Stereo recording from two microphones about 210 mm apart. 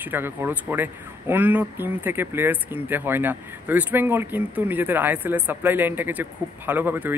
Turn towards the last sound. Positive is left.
turn(degrees=-10)  # may be behind; listen again after turning